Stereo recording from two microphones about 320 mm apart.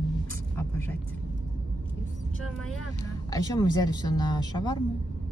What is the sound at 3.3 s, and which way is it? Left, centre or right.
Speech, centre.